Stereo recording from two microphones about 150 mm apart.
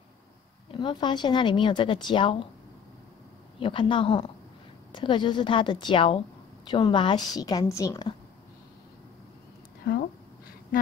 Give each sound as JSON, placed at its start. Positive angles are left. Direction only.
{"t": 0.7, "sound": "speech", "side_deg": 30}
{"t": 3.5, "sound": "a woman's voice", "side_deg": 35}